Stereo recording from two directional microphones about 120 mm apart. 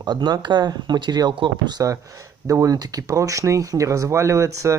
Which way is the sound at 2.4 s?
25° right (ahead or behind).